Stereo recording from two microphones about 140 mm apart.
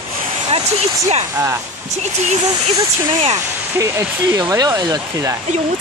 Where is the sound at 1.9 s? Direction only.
55° right (ahead or behind).